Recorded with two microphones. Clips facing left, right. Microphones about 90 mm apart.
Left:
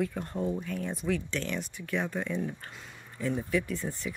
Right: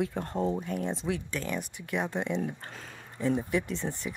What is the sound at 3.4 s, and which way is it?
Speech, 20° right (ahead or behind).